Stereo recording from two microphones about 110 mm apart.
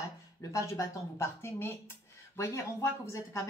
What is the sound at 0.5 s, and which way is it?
A woman's voice, 30° left (ahead or behind).